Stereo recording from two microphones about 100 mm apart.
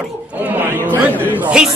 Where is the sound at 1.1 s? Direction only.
20° right (ahead or behind).